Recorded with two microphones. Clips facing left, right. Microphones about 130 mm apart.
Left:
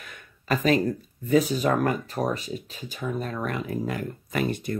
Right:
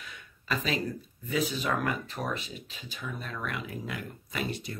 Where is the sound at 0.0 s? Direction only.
50° left (ahead or behind).